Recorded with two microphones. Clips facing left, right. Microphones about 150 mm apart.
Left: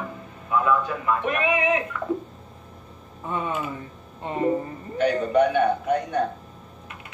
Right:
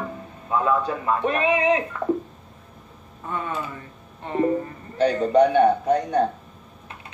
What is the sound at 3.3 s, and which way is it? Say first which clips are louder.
Speech: left 1 dB; 15° left (ahead or behind).